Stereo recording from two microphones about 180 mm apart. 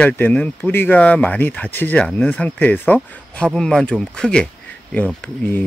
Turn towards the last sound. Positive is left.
turn(degrees=10)  # may be behind; listen again after turning